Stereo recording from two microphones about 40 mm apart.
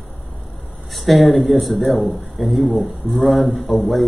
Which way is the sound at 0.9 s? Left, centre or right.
Centre.